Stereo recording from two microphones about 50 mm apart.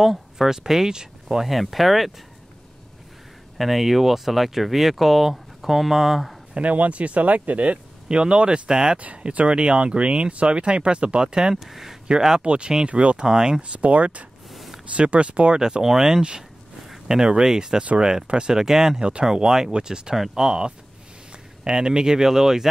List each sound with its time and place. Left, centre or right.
0.0 s speech: centre
1.5 s speech: centre
3.5 s speech: centre
6.5 s speech: right
11.6 s speech: centre
12.4 s speech: right
14.5 s a sound: centre
14.9 s speech: right
15.8 s speech: centre